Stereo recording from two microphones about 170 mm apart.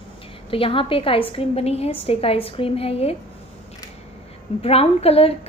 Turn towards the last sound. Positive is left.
turn(degrees=35)  # may be behind; listen again after turning